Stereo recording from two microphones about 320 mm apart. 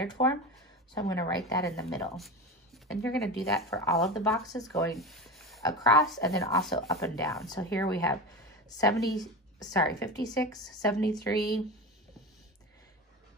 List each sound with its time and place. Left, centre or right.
0.2 s speech: left
4.7 s a sound: centre
5.6 s speech: centre